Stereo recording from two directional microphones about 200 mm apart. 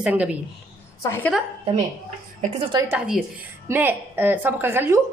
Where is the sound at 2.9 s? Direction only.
5° right (ahead or behind).